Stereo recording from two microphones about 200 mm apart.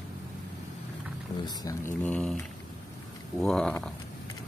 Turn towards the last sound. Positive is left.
turn(degrees=5)  # may be behind; listen again after turning